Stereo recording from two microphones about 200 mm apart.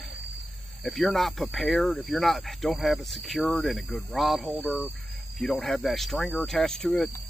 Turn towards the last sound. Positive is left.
turn(degrees=0)  # may be behind; listen again after turning